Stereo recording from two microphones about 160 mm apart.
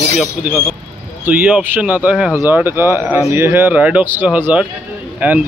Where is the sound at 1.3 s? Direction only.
5° right (ahead or behind).